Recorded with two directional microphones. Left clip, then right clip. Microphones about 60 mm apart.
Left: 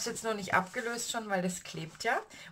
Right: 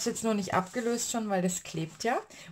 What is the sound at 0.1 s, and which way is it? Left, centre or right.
Speech, right.